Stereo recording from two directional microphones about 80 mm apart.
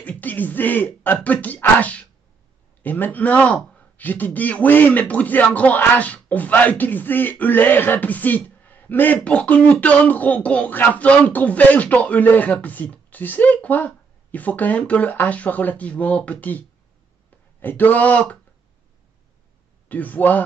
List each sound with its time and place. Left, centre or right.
0.2 s a man's voice: left
19.9 s a man's voice: left